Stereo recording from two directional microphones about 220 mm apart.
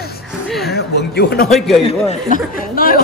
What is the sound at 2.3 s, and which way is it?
Speech, 40° left (ahead or behind).